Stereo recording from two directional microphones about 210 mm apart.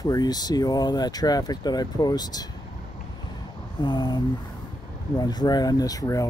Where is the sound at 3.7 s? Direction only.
20° left (ahead or behind).